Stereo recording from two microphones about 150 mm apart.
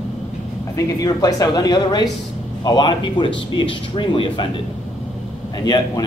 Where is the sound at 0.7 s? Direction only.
25° left (ahead or behind).